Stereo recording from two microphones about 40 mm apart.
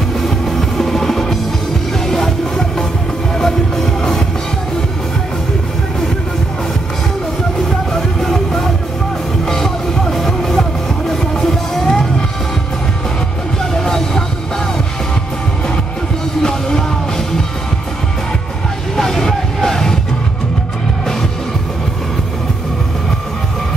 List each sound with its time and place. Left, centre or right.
0.3 s music: centre
7.5 s music: centre
13.7 s music: centre
16.4 s music: centre
18.9 s vehicle: centre